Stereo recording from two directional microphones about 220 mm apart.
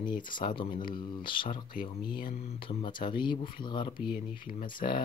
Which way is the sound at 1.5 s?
40° left (ahead or behind).